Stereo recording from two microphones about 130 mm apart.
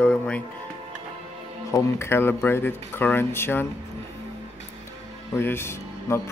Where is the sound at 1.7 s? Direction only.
20° left (ahead or behind).